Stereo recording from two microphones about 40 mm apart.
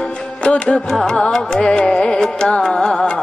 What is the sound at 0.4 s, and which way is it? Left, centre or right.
Music, left.